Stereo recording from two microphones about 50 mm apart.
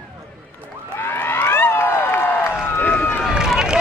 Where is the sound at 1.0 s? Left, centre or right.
Left.